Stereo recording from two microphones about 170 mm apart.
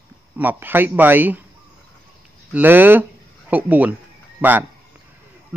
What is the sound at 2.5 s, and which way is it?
Speech, 10° right (ahead or behind).